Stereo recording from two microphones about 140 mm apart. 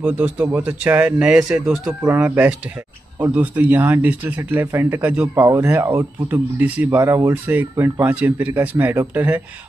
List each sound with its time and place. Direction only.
0.0 s speech: 15° right (ahead or behind)
5.3 s speech: 20° right (ahead or behind)